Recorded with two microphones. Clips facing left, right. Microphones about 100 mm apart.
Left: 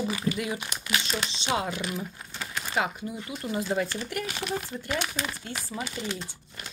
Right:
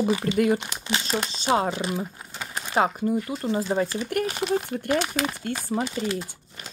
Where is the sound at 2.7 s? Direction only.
45° right (ahead or behind).